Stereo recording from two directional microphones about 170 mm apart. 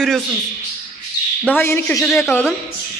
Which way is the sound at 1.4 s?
10° left (ahead or behind).